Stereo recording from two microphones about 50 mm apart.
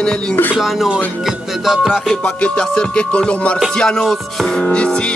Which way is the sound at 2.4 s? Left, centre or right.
Left.